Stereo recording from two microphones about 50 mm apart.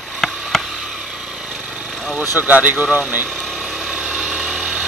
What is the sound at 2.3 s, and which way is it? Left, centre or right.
Speech, right.